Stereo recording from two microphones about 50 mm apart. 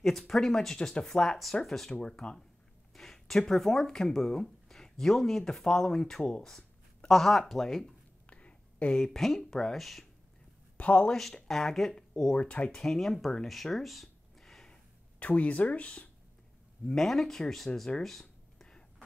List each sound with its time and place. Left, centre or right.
0.0 s speech: centre
2.0 s speech: centre
8.3 s a sound: left
8.9 s speech: centre
10.8 s speech: left
11.1 s speech: centre
12.4 s speech: left
12.8 s speech: centre
15.1 s speech: left
16.8 s speech: centre
18.6 s a sound: centre